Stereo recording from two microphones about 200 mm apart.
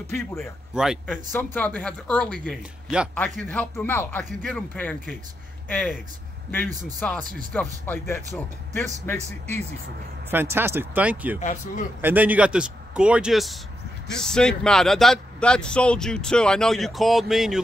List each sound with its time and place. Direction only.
0.1 s speech: 5° left (ahead or behind)
1.1 s speech: 10° left (ahead or behind)
7.0 s speech: 10° left (ahead or behind)
10.3 s speech: 10° right (ahead or behind)
11.3 s speech: 40° left (ahead or behind)
12.0 s speech: 10° right (ahead or behind)